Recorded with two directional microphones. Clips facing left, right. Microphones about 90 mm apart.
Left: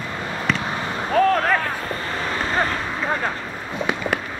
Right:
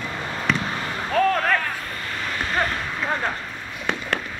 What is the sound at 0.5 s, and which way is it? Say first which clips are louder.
Basketball bounce: left 2 dB; 20° left (ahead or behind).